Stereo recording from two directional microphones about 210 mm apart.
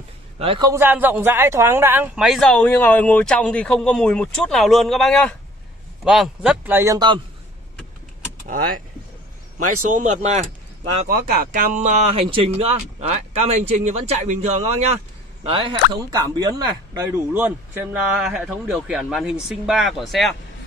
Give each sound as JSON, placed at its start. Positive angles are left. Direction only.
{"t": 0.4, "sound": "a man's voice", "side_deg": -25}
{"t": 9.6, "sound": "speech", "side_deg": -90}
{"t": 9.8, "sound": "speech", "side_deg": -35}
{"t": 11.1, "sound": "a man's voice", "side_deg": -45}